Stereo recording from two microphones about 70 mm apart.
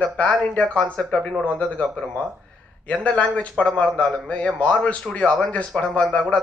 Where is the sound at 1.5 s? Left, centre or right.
Centre.